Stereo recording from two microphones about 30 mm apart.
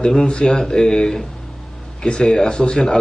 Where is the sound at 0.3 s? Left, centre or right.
Left.